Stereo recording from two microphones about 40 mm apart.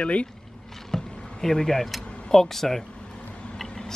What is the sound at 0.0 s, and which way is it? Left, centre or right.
Speech, left.